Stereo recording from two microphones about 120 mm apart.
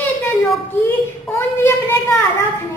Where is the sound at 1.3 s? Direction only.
20° left (ahead or behind).